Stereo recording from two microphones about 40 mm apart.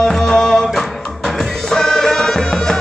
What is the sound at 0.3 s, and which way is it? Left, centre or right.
Music, centre.